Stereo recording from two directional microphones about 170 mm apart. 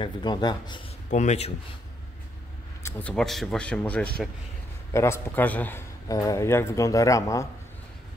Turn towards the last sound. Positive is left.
turn(degrees=20)  # may be behind; listen again after turning